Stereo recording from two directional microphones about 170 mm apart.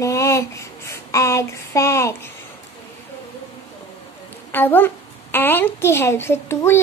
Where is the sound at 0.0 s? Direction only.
20° left (ahead or behind).